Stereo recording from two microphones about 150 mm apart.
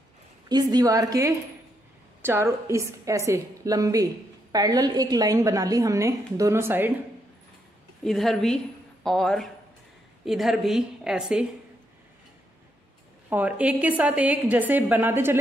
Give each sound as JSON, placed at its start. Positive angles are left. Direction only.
{"t": 0.5, "sound": "a woman's voice", "side_deg": -25}
{"t": 8.0, "sound": "a woman's voice", "side_deg": 0}
{"t": 13.3, "sound": "a woman's voice", "side_deg": -10}